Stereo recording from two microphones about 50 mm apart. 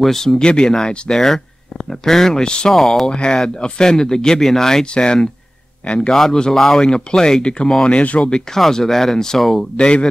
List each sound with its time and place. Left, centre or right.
0.0 s speech: centre
0.4 s speech: centre
2.7 s speech: centre
7.9 s speech: left
8.2 s speech: centre
9.8 s speech: left